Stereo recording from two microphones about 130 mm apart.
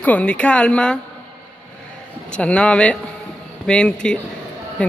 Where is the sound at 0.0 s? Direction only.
10° left (ahead or behind).